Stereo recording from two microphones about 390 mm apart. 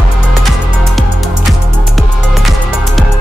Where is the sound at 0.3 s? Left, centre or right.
Centre.